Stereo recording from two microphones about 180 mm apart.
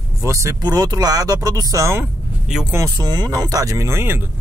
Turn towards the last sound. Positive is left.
turn(degrees=-10)  # may be behind; listen again after turning